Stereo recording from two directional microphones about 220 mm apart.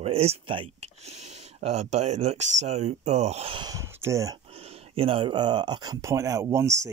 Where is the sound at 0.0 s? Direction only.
25° right (ahead or behind).